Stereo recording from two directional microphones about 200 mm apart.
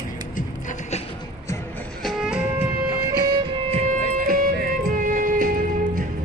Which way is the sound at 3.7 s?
40° right (ahead or behind).